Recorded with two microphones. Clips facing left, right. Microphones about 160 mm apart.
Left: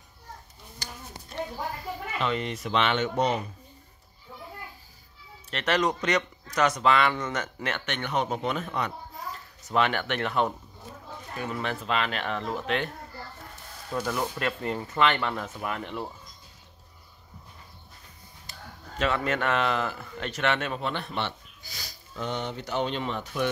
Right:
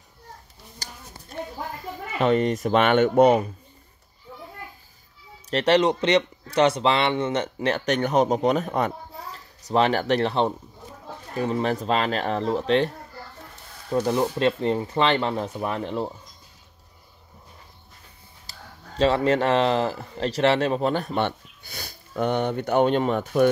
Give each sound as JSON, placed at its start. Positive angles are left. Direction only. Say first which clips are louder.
{"t": 0.8, "sound": "a sound", "louder": "even", "side_deg": -40}
{"t": 2.1, "sound": "speech", "louder": "right 10 dB", "side_deg": -45}
{"t": 5.5, "sound": "speech", "louder": "right 7 dB", "side_deg": -30}
{"t": 13.9, "sound": "speech", "louder": "right 7 dB", "side_deg": -30}
{"t": 18.5, "sound": "speech", "louder": "even", "side_deg": -30}